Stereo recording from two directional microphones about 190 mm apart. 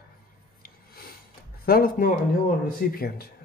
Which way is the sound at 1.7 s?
50° left (ahead or behind).